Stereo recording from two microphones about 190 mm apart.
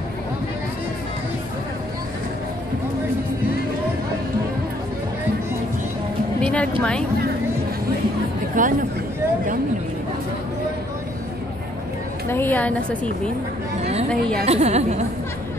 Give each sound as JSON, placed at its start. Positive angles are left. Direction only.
{"t": 6.4, "sound": "music", "side_deg": 5}
{"t": 6.8, "sound": "speech", "side_deg": 5}
{"t": 8.6, "sound": "speech", "side_deg": -45}
{"t": 12.3, "sound": "a woman's voice", "side_deg": 10}
{"t": 14.4, "sound": "speech", "side_deg": -35}